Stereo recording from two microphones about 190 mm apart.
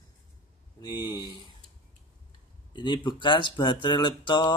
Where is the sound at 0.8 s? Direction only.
20° left (ahead or behind).